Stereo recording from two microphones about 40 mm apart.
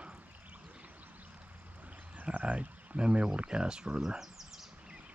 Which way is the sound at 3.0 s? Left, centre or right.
Right.